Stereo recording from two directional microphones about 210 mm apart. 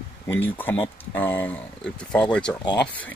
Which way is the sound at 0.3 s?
10° left (ahead or behind).